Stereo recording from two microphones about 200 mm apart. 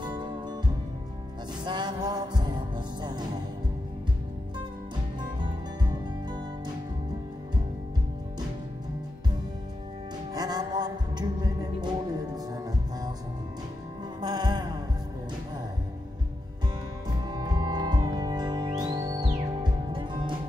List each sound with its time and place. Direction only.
0.0 s music: 20° right (ahead or behind)
1.6 s music: 20° right (ahead or behind)
10.3 s music: 20° right (ahead or behind)
14.2 s music: 20° right (ahead or behind)
17.3 s music: 20° right (ahead or behind)